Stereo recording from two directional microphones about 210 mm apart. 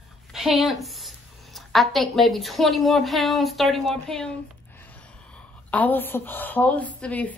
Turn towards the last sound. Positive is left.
turn(degrees=5)  # may be behind; listen again after turning